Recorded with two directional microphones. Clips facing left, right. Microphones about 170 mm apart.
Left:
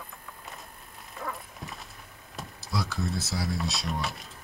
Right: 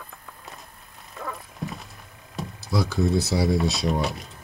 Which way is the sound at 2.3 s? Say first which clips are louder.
Right 7 dB; centre (ahead or behind).